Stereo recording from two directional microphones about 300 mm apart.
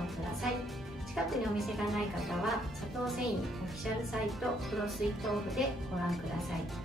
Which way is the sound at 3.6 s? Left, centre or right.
Centre.